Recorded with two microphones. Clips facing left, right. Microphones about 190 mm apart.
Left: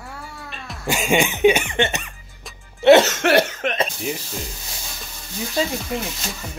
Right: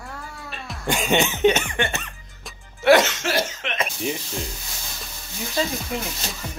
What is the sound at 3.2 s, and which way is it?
Speech, 65° left (ahead or behind).